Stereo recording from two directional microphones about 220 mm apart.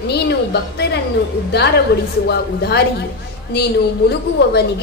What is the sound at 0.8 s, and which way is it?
Speech, 45° left (ahead or behind).